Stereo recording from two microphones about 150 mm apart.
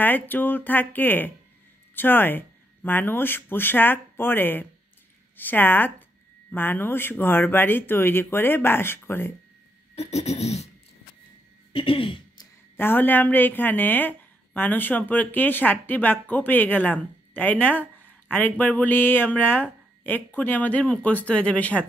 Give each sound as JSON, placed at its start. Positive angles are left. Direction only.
{"t": 0.0, "sound": "a woman's voice", "side_deg": 10}
{"t": 9.9, "sound": "a sound", "side_deg": 45}
{"t": 11.7, "sound": "throat clearing", "side_deg": 35}
{"t": 12.7, "sound": "a woman's voice", "side_deg": 15}